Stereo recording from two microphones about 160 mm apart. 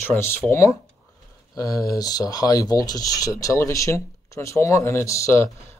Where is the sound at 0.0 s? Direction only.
15° left (ahead or behind).